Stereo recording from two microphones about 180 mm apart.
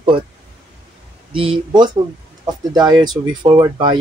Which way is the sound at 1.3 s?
30° right (ahead or behind).